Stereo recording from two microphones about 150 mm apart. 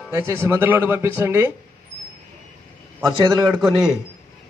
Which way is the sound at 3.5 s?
Centre (ahead or behind).